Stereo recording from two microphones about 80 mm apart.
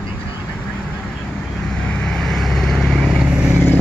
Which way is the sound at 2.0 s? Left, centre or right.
Centre.